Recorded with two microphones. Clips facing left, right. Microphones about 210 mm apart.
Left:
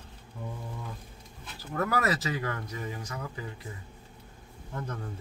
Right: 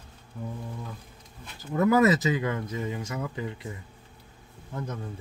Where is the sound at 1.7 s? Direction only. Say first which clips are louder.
Right 8 dB; 20° right (ahead or behind).